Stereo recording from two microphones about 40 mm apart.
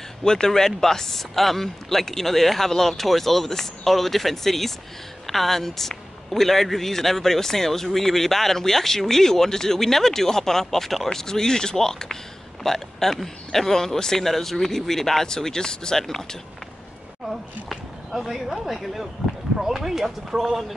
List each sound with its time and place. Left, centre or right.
0.2 s a man's voice: centre
17.3 s speech: centre